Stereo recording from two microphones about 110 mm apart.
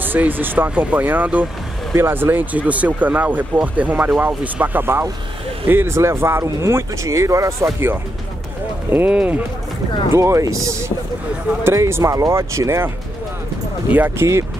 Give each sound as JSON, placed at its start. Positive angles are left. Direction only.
{"t": 0.0, "sound": "speech", "side_deg": -15}
{"t": 8.9, "sound": "speech", "side_deg": -15}
{"t": 10.1, "sound": "speech", "side_deg": -25}
{"t": 13.9, "sound": "speech", "side_deg": -15}